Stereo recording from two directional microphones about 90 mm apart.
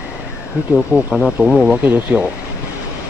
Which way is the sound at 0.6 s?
15° right (ahead or behind).